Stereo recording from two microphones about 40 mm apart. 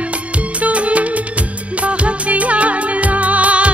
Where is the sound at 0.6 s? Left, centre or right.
Right.